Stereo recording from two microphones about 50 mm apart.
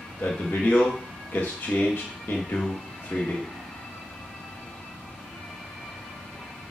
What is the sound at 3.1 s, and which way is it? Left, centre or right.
Speech, left.